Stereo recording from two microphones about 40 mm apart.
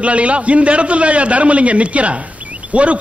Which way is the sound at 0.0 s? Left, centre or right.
Right.